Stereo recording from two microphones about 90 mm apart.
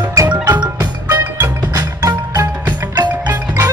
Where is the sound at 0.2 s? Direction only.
35° right (ahead or behind).